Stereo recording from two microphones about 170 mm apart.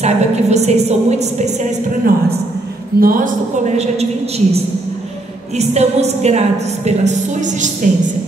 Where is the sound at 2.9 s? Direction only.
55° right (ahead or behind).